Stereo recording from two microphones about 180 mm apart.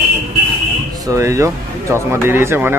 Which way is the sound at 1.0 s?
15° right (ahead or behind).